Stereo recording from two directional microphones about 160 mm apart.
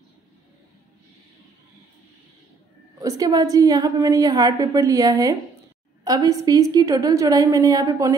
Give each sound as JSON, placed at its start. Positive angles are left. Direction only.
{"t": 3.0, "sound": "a woman's voice", "side_deg": -20}